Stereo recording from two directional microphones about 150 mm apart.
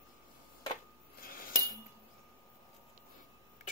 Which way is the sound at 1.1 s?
75° left (ahead or behind).